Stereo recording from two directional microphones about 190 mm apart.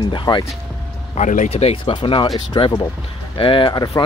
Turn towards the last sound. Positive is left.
turn(degrees=20)  # may be behind; listen again after turning